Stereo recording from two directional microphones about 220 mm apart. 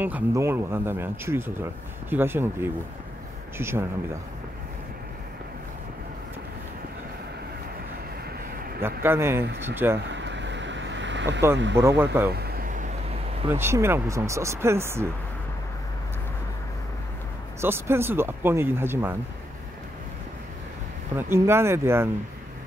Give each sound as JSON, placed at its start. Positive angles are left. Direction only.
{"t": 0.0, "sound": "speech", "side_deg": -10}
{"t": 8.8, "sound": "speech", "side_deg": -10}
{"t": 10.1, "sound": "vehicle", "side_deg": -55}
{"t": 11.5, "sound": "speech", "side_deg": -55}
{"t": 12.0, "sound": "speech", "side_deg": -10}
{"t": 12.3, "sound": "a sound", "side_deg": -45}
{"t": 13.5, "sound": "speech", "side_deg": -10}
{"t": 17.6, "sound": "speech", "side_deg": -10}
{"t": 21.2, "sound": "speech", "side_deg": -10}